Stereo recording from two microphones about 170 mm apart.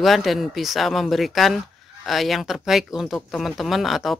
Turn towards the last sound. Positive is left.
turn(degrees=0)  # may be behind; listen again after turning